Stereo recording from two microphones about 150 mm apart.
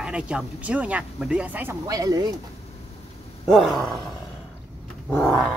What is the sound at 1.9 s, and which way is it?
Speech, 25° right (ahead or behind).